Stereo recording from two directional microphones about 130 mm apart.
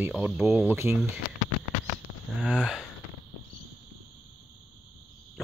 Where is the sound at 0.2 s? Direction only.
15° right (ahead or behind).